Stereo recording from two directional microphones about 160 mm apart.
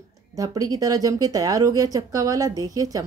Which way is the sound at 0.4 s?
20° right (ahead or behind).